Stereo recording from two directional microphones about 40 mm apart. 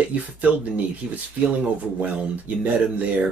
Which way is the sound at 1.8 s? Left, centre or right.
Right.